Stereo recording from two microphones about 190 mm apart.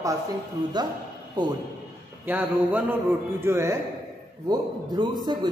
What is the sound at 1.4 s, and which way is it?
Speech, 20° right (ahead or behind).